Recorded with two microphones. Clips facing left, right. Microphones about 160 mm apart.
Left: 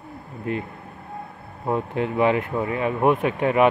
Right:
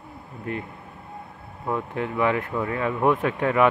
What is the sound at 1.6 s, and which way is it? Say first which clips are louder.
Speech: left 3 dB; 25° left (ahead or behind).